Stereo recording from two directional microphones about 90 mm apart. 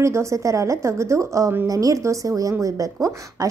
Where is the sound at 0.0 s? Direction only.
35° right (ahead or behind).